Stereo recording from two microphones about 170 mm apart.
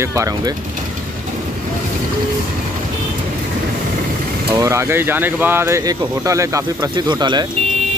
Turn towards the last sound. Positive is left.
turn(degrees=-25)  # may be behind; listen again after turning